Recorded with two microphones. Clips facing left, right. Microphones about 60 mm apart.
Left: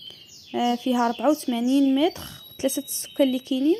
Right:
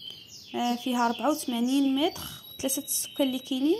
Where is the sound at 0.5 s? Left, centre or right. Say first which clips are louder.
Left 5 dB; left.